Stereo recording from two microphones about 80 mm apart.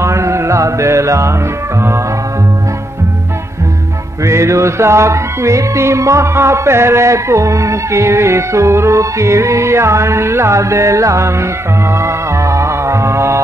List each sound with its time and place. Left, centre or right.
0.0 s music: right
4.3 s music: right